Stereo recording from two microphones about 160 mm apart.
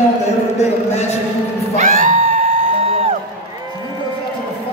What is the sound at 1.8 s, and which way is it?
Music, 55° right (ahead or behind).